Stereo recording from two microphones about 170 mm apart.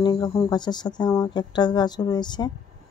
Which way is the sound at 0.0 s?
25° left (ahead or behind).